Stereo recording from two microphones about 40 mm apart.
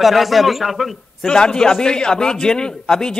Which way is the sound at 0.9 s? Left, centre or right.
Centre.